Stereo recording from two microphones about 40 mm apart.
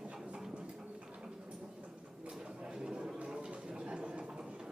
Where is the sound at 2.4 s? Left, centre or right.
Right.